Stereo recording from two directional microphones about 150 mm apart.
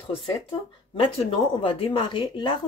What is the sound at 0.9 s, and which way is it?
Speech, 40° left (ahead or behind).